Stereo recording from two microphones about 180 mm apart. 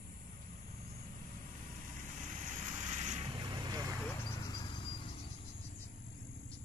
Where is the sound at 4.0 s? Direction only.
15° left (ahead or behind).